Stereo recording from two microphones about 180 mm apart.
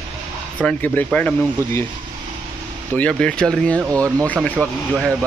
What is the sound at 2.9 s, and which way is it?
Speech, 5° left (ahead or behind).